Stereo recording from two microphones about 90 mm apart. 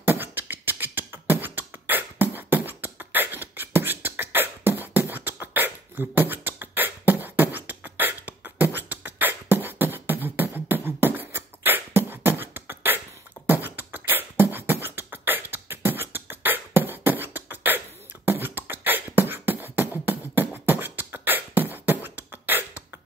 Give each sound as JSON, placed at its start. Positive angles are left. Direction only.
{"t": 0.0, "sound": "beatboxing", "side_deg": -25}